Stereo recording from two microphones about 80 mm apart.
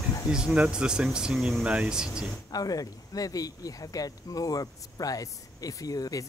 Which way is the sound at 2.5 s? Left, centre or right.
Left.